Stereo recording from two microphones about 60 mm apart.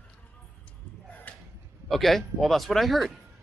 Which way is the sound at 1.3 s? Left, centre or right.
Left.